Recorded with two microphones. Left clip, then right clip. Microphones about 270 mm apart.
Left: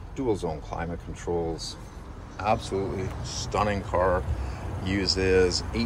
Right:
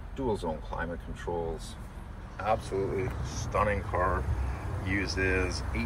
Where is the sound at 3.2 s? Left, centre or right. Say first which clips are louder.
Left 4 dB; centre.